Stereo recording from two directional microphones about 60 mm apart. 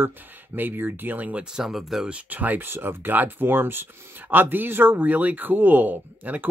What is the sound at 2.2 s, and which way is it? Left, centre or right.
Speech, right.